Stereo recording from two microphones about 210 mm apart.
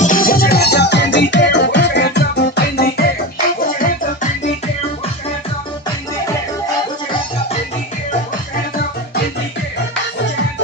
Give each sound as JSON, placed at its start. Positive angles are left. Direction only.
{"t": 0.0, "sound": "music", "side_deg": 40}